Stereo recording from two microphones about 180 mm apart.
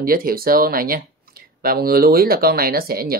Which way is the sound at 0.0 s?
55° right (ahead or behind).